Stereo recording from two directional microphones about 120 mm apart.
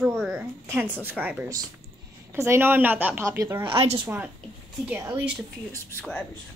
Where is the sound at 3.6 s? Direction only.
40° right (ahead or behind).